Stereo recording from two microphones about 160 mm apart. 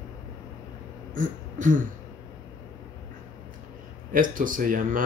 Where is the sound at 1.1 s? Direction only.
55° right (ahead or behind).